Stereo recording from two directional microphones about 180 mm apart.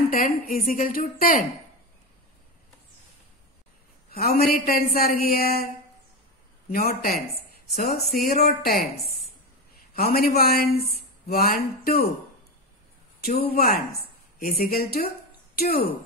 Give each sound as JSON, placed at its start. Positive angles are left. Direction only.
{"t": 0.1, "sound": "a woman's voice", "side_deg": 50}
{"t": 4.1, "sound": "a man's voice", "side_deg": 60}
{"t": 6.7, "sound": "a woman's voice", "side_deg": 55}
{"t": 13.2, "sound": "a man's voice", "side_deg": 55}